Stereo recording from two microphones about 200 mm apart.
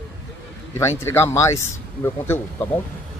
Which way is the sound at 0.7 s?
15° left (ahead or behind).